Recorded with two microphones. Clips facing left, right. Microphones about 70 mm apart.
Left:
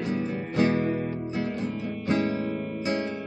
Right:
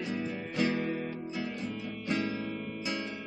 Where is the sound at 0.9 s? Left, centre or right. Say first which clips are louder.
Left 6 dB; left.